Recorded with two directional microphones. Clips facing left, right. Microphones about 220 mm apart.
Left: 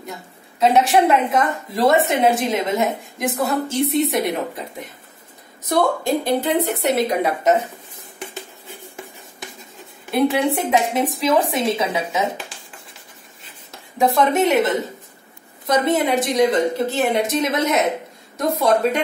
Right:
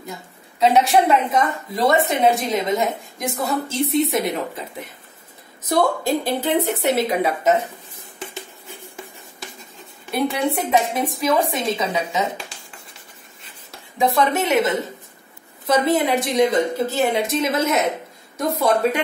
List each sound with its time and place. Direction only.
0.6 s a woman's voice: centre (ahead or behind)
6.4 s a woman's voice: centre (ahead or behind)
10.1 s a woman's voice: centre (ahead or behind)
13.4 s writing: centre (ahead or behind)
15.6 s a woman's voice: centre (ahead or behind)